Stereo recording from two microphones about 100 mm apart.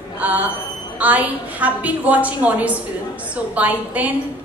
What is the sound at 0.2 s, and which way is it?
A woman's voice, 15° right (ahead or behind).